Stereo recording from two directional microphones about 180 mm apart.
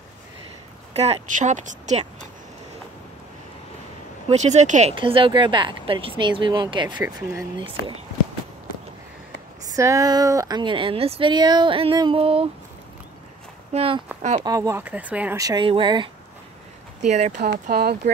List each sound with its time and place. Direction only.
0.9 s speech: 35° right (ahead or behind)
4.3 s speech: 40° right (ahead or behind)
4.9 s speech: 30° right (ahead or behind)
9.7 s speech: 20° right (ahead or behind)
13.7 s speech: 30° right (ahead or behind)
14.4 s speech: 20° right (ahead or behind)
15.3 s speech: 20° right (ahead or behind)
17.1 s speech: 40° right (ahead or behind)
17.4 s speech: 60° right (ahead or behind)